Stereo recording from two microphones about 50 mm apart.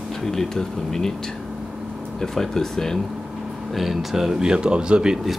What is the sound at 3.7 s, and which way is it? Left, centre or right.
Speech, centre.